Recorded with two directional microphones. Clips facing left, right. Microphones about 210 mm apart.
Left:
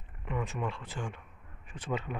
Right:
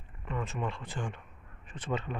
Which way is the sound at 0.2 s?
15° left (ahead or behind).